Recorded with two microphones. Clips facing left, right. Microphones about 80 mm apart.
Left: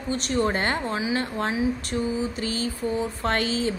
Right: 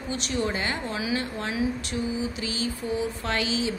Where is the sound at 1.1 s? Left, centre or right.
Left.